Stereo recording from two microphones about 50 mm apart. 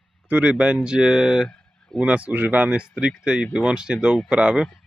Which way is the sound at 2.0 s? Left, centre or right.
Right.